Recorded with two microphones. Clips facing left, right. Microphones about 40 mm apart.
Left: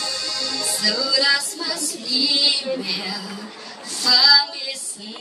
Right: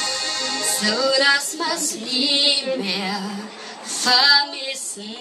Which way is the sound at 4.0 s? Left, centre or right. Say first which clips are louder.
Even; right.